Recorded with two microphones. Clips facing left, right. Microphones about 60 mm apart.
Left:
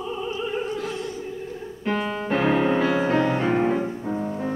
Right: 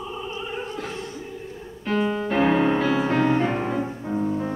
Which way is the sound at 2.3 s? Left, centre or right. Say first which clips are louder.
Even; centre.